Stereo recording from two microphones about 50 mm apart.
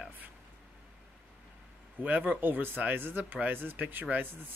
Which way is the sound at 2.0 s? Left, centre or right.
Right.